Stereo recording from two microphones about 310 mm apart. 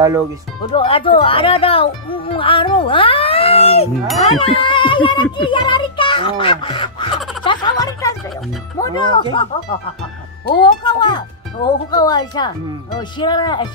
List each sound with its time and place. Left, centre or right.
0.6 s speech: centre
7.4 s a sound: centre
8.7 s speech: centre
10.6 s speech: centre